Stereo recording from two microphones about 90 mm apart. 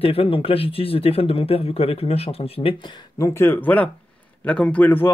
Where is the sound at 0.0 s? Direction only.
90° left; by 3.1 s 60° left (ahead or behind).